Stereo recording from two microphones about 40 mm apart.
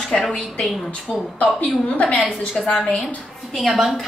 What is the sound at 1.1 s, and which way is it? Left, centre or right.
Speech, left.